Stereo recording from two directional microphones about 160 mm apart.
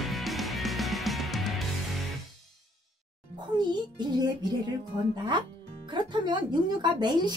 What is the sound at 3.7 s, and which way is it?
Speech, 25° right (ahead or behind).